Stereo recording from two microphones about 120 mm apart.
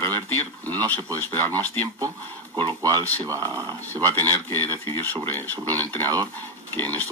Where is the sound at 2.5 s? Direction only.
40° right (ahead or behind).